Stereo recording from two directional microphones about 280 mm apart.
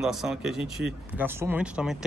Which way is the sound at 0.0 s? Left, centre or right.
Centre.